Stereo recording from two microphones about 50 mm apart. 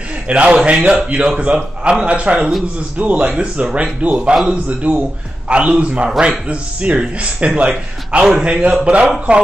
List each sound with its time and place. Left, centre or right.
0.3 s a man's voice: right